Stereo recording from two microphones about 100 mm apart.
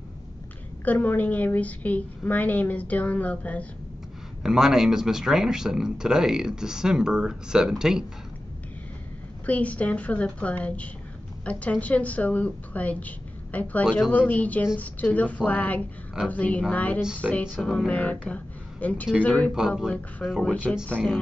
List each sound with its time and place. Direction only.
0.8 s a woman's voice: 15° left (ahead or behind)
4.4 s speech: 5° right (ahead or behind)
9.5 s a woman's voice: 15° left (ahead or behind)
17.0 s speech: 10° right (ahead or behind)
17.7 s a woman's voice: 15° left (ahead or behind)
20.2 s speech: centre (ahead or behind)
20.8 s a woman's voice: 10° left (ahead or behind)